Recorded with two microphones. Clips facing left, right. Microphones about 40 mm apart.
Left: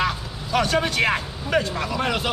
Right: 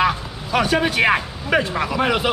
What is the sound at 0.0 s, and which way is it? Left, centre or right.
Speech, centre.